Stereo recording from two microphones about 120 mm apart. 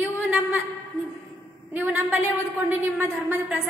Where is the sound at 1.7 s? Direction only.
15° right (ahead or behind).